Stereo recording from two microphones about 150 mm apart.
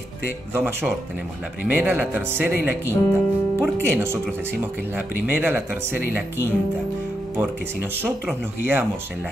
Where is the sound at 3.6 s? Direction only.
15° right (ahead or behind).